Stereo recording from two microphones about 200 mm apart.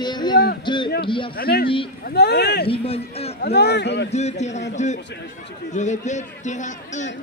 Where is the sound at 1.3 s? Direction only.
50° left (ahead or behind).